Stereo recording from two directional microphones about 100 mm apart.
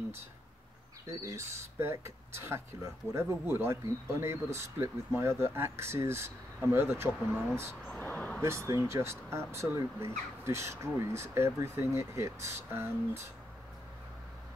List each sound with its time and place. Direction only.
1.2 s speech: 30° right (ahead or behind)
7.8 s a sound: 15° left (ahead or behind)
8.4 s speech: 30° right (ahead or behind)